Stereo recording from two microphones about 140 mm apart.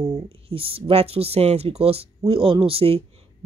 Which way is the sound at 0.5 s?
40° right (ahead or behind).